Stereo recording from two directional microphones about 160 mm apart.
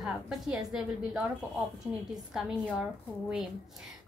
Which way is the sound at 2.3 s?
5° right (ahead or behind).